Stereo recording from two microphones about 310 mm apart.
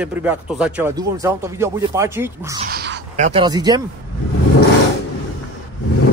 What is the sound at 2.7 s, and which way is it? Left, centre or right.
Speech, right.